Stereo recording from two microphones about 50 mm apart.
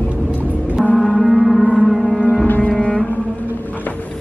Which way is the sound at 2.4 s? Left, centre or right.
Left.